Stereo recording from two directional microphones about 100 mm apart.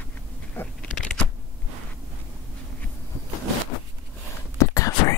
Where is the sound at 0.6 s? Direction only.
20° left (ahead or behind).